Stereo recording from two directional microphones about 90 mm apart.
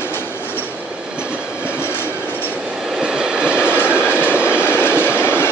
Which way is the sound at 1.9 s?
25° left (ahead or behind).